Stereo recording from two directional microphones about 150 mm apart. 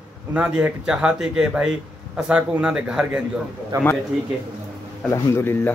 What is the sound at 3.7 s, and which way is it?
Speech, 25° right (ahead or behind).